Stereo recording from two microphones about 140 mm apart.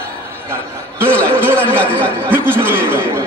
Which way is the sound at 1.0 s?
10° left (ahead or behind).